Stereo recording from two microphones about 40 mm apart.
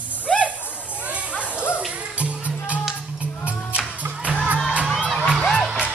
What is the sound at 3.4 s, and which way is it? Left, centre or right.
Music, right.